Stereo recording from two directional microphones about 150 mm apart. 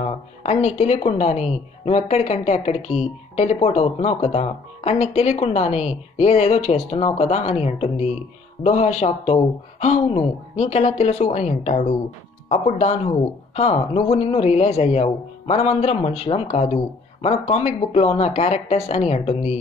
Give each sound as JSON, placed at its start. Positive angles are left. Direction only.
{"t": 0.0, "sound": "speech", "side_deg": 45}